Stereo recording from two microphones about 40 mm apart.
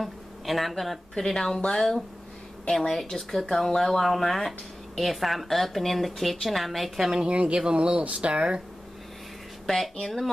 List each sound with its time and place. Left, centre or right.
0.0 s speech: centre
7.2 s speech: right
10.0 s speech: centre